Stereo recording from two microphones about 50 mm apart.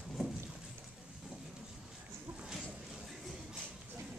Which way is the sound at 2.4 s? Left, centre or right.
Centre.